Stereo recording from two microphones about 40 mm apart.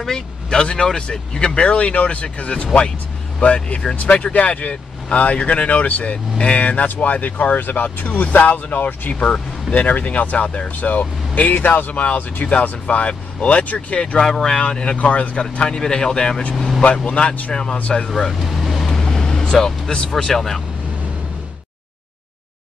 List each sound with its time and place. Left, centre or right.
0.0 s speech: centre
3.9 s speech: left
4.2 s speech: left
12.8 s speech: left
14.2 s speech: centre
15.0 s speech: left
15.6 s speech: centre
17.0 s speech: left
18.4 s vehicle: centre
18.9 s vehicle: centre